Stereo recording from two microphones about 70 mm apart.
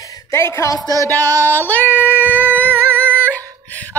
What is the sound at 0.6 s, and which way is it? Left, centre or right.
Music, left.